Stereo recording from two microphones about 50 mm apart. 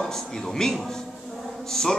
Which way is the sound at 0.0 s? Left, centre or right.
Centre.